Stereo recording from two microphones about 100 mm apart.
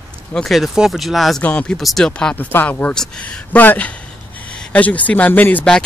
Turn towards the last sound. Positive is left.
turn(degrees=20)  # may be behind; listen again after turning